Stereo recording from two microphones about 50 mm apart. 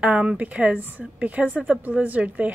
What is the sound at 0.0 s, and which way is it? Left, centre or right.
A woman's voice, right.